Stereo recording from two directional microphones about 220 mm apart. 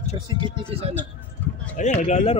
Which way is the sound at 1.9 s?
30° left (ahead or behind).